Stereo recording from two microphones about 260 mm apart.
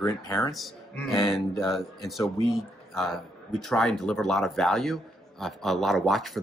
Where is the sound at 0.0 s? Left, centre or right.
Centre.